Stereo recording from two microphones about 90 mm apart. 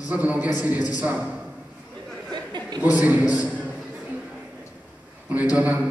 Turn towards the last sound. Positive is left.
turn(degrees=-15)  # may be behind; listen again after turning